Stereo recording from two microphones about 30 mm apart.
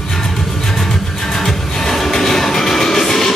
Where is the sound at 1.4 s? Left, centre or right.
Centre.